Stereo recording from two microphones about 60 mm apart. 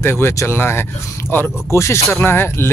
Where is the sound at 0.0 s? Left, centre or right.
Left.